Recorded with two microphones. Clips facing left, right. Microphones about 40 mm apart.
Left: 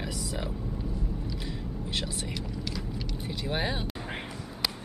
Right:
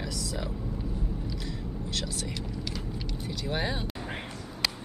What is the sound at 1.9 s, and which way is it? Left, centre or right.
Speech, left.